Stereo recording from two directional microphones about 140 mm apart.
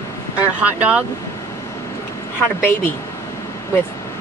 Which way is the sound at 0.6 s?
10° right (ahead or behind).